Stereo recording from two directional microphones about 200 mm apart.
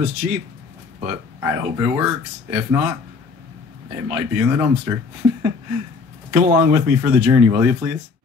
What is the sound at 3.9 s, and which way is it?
Speech, 5° right (ahead or behind).